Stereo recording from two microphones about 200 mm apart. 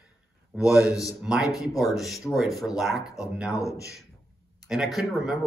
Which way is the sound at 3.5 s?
15° left (ahead or behind).